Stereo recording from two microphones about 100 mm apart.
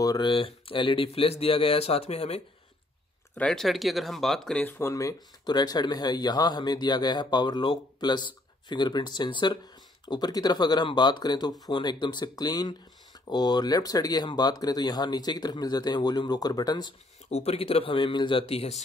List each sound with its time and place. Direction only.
0.0 s speech: 40° left (ahead or behind)
0.3 s speech: 60° left (ahead or behind); by 2.4 s 90° left
3.3 s speech: 5° left (ahead or behind)
4.6 s speech: 20° left (ahead or behind)
4.9 s speech: 40° left (ahead or behind)
17.3 s speech: 90° left; by 18.4 s 55° left (ahead or behind)
18.5 s speech: 85° left